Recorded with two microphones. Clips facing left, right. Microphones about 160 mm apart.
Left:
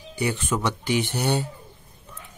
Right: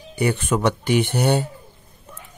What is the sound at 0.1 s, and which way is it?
Speech, 55° right (ahead or behind).